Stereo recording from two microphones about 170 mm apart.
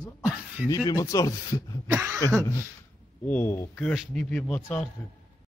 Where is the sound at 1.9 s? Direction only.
5° right (ahead or behind).